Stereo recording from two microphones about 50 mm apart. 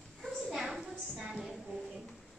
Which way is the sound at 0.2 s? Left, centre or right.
Centre.